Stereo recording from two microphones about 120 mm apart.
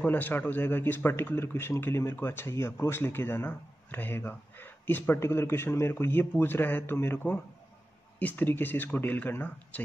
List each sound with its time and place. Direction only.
0.0 s a man's voice: 15° left (ahead or behind)